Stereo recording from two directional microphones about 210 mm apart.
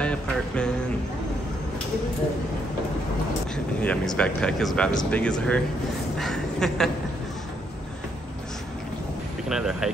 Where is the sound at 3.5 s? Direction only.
5° left (ahead or behind).